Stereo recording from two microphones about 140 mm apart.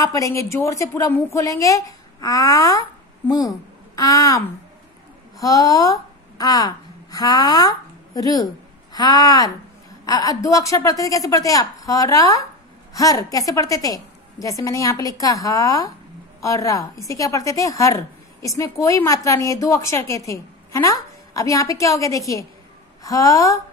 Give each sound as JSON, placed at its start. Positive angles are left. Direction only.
{"t": 0.0, "sound": "a woman's voice", "side_deg": 25}